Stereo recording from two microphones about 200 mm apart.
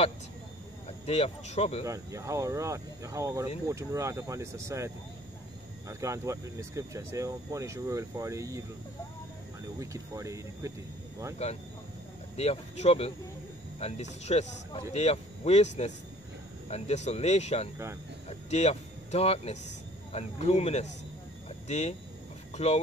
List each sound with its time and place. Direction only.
1.0 s speech: 30° left (ahead or behind)
1.9 s speech: 15° right (ahead or behind)
9.8 s speech: 15° right (ahead or behind)
11.4 s speech: 30° left (ahead or behind)
21.5 s a sound: 35° left (ahead or behind)